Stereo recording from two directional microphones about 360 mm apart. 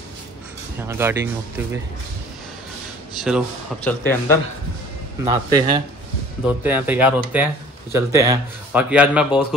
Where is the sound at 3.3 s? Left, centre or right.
Centre.